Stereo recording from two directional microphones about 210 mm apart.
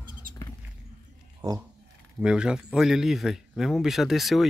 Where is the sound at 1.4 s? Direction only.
20° right (ahead or behind).